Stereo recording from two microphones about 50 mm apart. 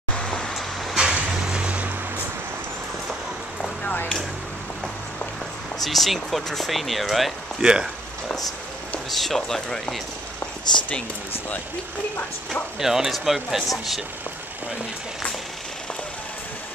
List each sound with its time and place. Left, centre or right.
1.1 s vehicle: right
3.8 s a sound: left
5.9 s speech: centre
7.6 s speech: centre
9.1 s speech: centre
12.7 s speech: centre